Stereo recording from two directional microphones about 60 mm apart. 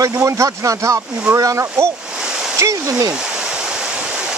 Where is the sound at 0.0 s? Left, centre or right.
Right.